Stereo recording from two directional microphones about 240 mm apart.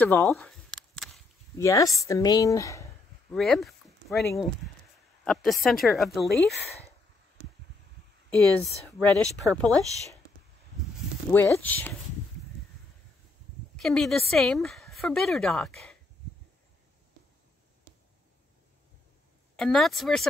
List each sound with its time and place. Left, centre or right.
0.0 s a sound: centre
1.6 s speech: centre
3.3 s a sound: centre
5.2 s speech: centre
8.3 s speech: centre
11.3 s speech: centre
13.7 s speech: centre
19.5 s speech: centre